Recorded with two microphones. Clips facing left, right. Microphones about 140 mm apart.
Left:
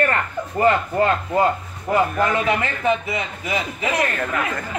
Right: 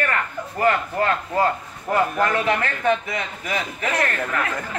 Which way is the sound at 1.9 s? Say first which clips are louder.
Left 1 dB; 10° left (ahead or behind).